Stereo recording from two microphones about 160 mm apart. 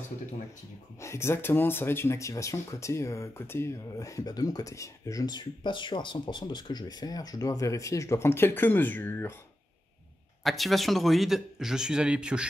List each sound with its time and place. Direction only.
1.0 s speech: 15° left (ahead or behind)
10.4 s a man's voice: centre (ahead or behind)